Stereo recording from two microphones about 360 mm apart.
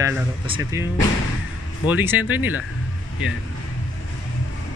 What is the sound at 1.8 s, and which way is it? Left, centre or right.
Speech, centre.